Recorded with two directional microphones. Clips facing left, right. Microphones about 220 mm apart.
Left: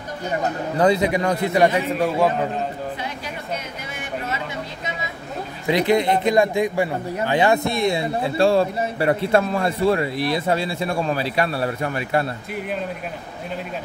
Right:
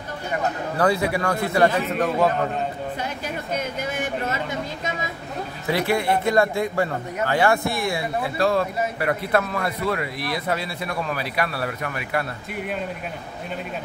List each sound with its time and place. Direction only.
0.7 s a man's voice: 20° left (ahead or behind)
5.7 s speech: 20° left (ahead or behind)